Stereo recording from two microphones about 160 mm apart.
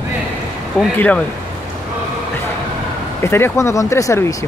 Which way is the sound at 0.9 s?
10° left (ahead or behind).